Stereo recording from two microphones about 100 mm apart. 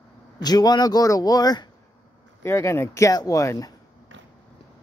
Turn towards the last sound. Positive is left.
turn(degrees=30)  # may be behind; listen again after turning